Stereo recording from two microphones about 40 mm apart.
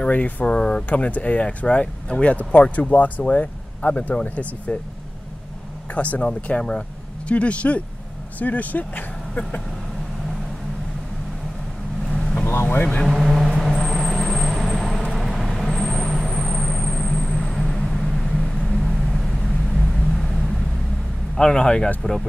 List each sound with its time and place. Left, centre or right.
0.1 s speech: left
0.5 s speech: left
0.8 s speech: left
4.1 s speech: left
5.9 s speech: left
12.1 s vehicle: centre
13.1 s vehicle: centre
21.4 s speech: left